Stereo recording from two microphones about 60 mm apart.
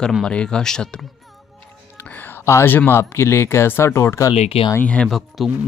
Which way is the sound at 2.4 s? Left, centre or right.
Left.